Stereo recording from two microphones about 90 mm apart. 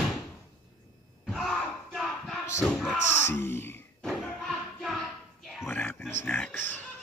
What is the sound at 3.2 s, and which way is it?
Speech, 30° left (ahead or behind).